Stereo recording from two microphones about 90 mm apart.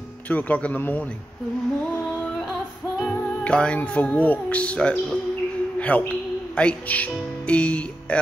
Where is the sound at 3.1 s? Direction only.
15° left (ahead or behind).